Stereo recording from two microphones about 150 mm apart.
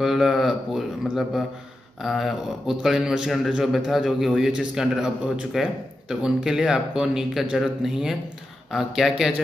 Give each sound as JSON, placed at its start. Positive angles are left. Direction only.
{"t": 0.0, "sound": "a man's voice", "side_deg": 0}